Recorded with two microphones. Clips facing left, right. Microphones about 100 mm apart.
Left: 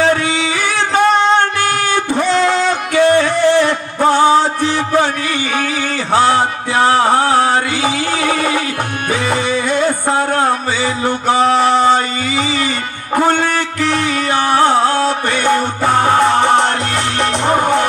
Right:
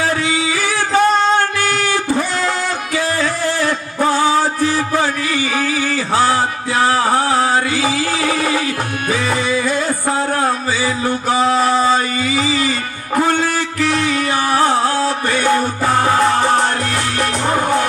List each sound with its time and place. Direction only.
0.0 s a sound: 25° left (ahead or behind)
0.9 s music: 20° left (ahead or behind)
3.0 s music: 65° left (ahead or behind)
3.6 s music: 25° left (ahead or behind)
6.1 s a sound: 25° left (ahead or behind)
7.7 s chant: 20° left (ahead or behind)
9.1 s music: 25° left (ahead or behind)
14.5 s music: 25° left (ahead or behind)